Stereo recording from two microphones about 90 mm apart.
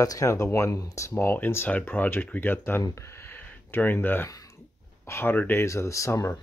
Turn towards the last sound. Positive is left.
turn(degrees=35)  # may be behind; listen again after turning